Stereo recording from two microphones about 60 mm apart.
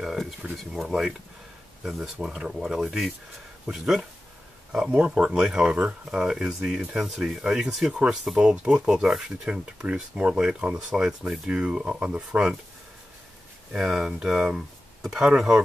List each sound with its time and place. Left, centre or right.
0.0 s speech: centre
10.9 s speech: centre
13.7 s speech: centre